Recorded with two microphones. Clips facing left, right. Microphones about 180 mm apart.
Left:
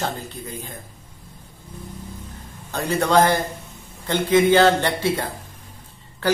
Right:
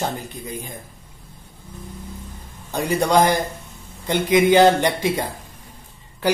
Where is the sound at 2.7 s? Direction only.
15° right (ahead or behind).